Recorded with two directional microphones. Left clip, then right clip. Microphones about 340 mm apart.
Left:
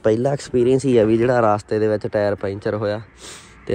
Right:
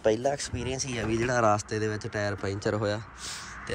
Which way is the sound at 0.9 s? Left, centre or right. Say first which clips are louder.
Left 9 dB; centre.